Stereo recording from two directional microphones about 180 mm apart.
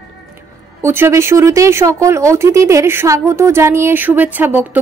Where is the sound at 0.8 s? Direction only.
15° right (ahead or behind).